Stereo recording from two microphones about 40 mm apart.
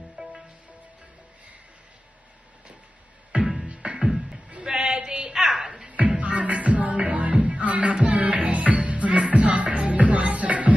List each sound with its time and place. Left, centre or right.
0.2 s music: right
3.6 s music: right
4.5 s a sound: right
5.9 s music: right